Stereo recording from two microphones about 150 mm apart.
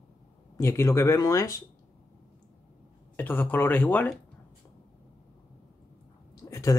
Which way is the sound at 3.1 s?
10° left (ahead or behind).